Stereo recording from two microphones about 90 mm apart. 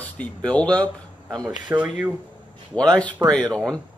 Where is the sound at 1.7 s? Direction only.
15° right (ahead or behind).